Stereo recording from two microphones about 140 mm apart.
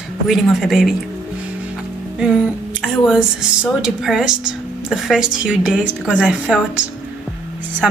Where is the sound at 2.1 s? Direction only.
5° right (ahead or behind).